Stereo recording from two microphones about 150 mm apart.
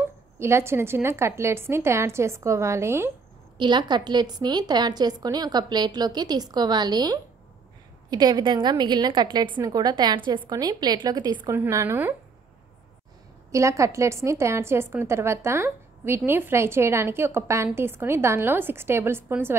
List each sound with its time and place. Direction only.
0.0 s a woman's voice: 15° right (ahead or behind)
3.5 s a woman's voice: 30° right (ahead or behind)
11.4 s a woman's voice: 20° right (ahead or behind)
13.5 s a woman's voice: 20° right (ahead or behind)